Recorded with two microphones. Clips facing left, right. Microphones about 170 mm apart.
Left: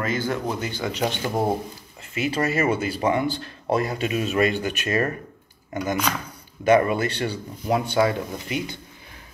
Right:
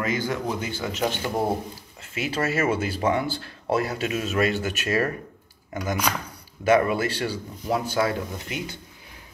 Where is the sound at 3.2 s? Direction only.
20° left (ahead or behind).